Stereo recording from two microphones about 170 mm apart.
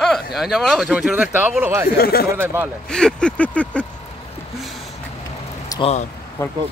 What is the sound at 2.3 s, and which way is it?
Speech, 15° right (ahead or behind).